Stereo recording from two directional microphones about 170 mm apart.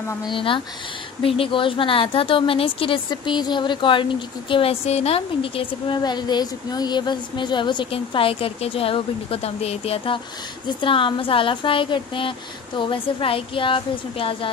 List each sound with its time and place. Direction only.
0.2 s a woman's voice: 30° left (ahead or behind)